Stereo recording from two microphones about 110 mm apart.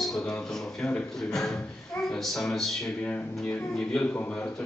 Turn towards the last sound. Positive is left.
turn(degrees=15)  # may be behind; listen again after turning